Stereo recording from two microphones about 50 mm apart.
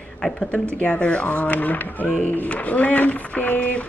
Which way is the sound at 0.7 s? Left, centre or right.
Left.